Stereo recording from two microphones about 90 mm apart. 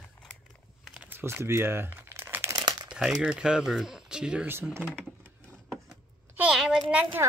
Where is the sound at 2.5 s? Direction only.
50° right (ahead or behind).